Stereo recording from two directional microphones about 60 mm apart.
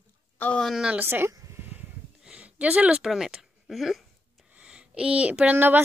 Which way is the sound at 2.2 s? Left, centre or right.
Right.